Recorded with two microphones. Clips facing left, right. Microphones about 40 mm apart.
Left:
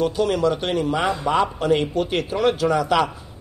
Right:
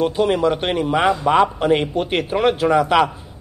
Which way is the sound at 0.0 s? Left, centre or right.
Right.